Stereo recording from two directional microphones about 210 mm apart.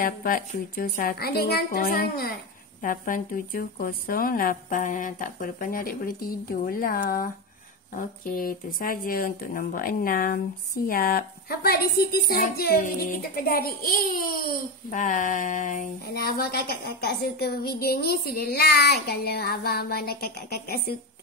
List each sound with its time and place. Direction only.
0.0 s speech: 45° left (ahead or behind)